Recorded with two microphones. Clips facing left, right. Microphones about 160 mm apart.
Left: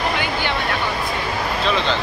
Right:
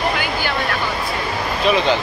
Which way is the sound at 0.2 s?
25° left (ahead or behind).